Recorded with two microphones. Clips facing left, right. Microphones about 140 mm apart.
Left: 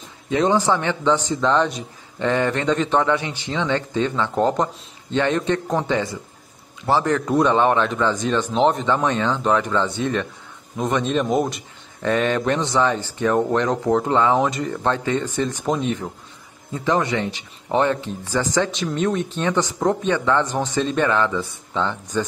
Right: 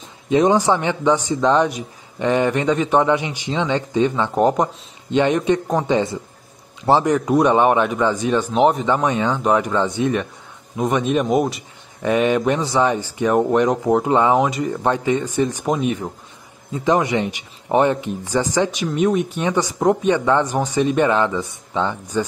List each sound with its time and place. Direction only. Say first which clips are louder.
0.3 s a man's voice: right 3 dB; 15° right (ahead or behind)